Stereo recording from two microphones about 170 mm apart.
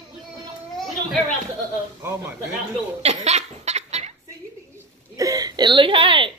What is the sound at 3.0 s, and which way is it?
Laughter, 40° right (ahead or behind).